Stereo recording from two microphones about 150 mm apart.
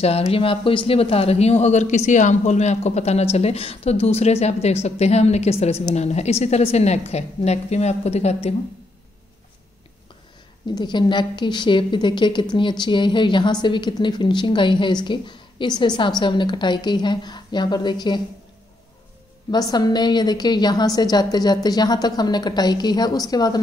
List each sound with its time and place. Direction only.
0.0 s speech: 40° left (ahead or behind)
10.7 s a woman's voice: 30° left (ahead or behind)
19.5 s a woman's voice: 25° left (ahead or behind)